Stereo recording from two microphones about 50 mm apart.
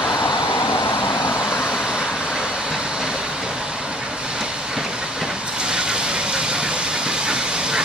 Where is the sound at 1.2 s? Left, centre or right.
Centre.